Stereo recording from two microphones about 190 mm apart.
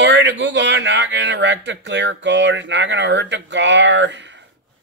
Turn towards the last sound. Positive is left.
turn(degrees=-70)  # may be behind; listen again after turning